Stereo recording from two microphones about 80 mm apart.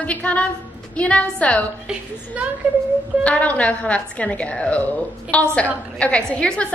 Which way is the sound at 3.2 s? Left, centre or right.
Centre.